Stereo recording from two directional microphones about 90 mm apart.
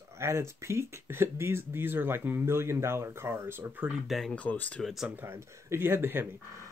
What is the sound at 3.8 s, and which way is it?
Speech, 5° right (ahead or behind).